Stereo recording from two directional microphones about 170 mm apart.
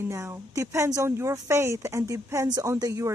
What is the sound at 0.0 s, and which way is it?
Speech, 15° right (ahead or behind).